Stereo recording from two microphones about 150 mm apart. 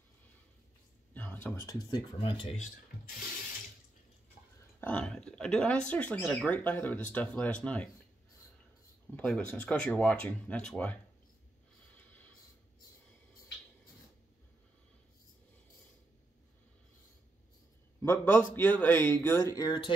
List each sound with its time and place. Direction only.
1.1 s speech: 10° left (ahead or behind)
2.1 s speech: 35° left (ahead or behind)
4.7 s speech: 10° left (ahead or behind)
9.1 s speech: 10° left (ahead or behind)
18.0 s speech: 15° left (ahead or behind)
19.2 s music: 20° left (ahead or behind)